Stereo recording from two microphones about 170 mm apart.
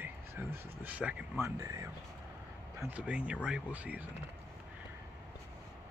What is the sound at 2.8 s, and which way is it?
Speech, 10° right (ahead or behind).